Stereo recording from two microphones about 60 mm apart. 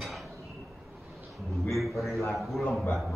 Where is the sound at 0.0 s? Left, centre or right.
Centre.